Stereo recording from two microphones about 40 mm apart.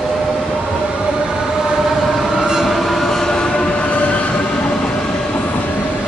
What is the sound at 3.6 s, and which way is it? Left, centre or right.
Train, left.